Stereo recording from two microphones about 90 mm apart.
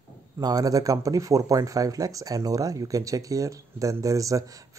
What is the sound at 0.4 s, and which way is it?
Speech, 45° right (ahead or behind).